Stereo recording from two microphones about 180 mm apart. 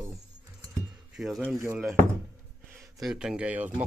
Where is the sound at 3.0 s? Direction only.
5° right (ahead or behind).